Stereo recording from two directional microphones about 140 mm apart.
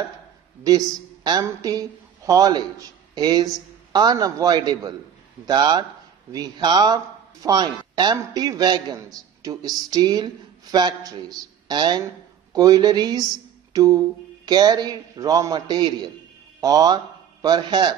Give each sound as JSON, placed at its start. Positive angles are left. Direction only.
{"t": 0.7, "sound": "a man's voice", "side_deg": -30}